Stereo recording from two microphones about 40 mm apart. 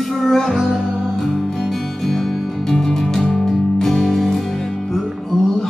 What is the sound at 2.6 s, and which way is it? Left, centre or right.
Music, centre.